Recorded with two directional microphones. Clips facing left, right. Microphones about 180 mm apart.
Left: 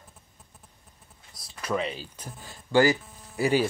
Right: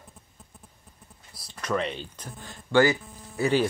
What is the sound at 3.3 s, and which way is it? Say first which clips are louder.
Hum: even; 10° left (ahead or behind).